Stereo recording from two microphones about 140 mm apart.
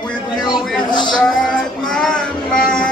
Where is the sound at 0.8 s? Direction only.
30° left (ahead or behind).